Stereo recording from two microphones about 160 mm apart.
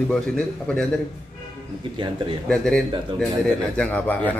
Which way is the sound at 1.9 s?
30° right (ahead or behind).